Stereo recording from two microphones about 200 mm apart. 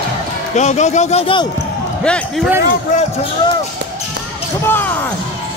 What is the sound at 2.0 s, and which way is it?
Speech, 5° left (ahead or behind).